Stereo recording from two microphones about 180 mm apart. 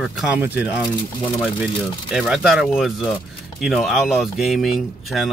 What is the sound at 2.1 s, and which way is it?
Speech, centre (ahead or behind).